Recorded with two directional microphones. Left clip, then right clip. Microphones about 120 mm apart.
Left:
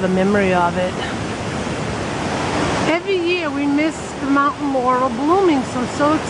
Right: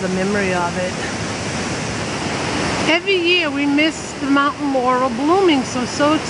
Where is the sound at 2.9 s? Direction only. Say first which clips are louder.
Right 6 dB; 5° left (ahead or behind).